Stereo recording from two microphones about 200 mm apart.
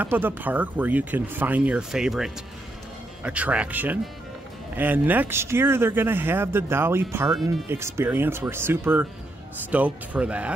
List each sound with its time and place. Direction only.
0.0 s speech: 10° right (ahead or behind)